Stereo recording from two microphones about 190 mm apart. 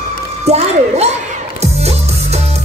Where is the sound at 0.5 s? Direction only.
35° right (ahead or behind).